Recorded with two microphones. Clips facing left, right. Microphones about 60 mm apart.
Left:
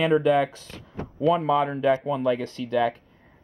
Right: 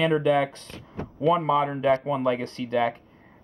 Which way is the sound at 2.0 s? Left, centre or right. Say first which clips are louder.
Left 1 dB; centre.